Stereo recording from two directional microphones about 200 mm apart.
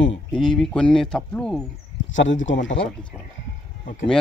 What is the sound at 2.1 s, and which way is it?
Speech, 70° left (ahead or behind).